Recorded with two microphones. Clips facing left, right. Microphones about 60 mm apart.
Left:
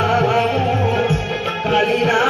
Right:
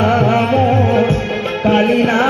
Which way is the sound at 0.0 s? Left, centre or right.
Centre.